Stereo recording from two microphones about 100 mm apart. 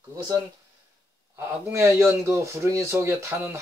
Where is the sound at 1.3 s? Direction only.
25° right (ahead or behind).